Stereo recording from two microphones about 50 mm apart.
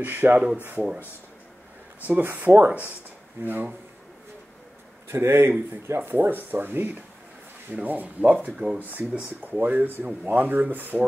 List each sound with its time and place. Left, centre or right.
0.0 s speech: right
2.0 s speech: right
3.4 s speech: right
5.0 s speech: right
5.8 s speech: right
6.0 s speech: right